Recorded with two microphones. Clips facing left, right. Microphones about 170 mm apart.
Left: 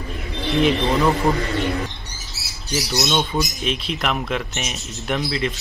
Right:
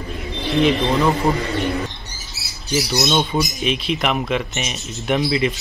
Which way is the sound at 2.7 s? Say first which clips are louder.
Right 3 dB; centre (ahead or behind).